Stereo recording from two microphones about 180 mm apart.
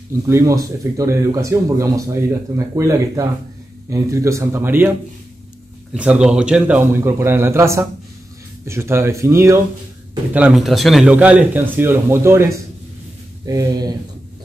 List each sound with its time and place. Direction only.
0.1 s speech: 15° right (ahead or behind)
5.9 s speech: 5° right (ahead or behind)
10.3 s speech: 5° right (ahead or behind); by 13.9 s 20° right (ahead or behind)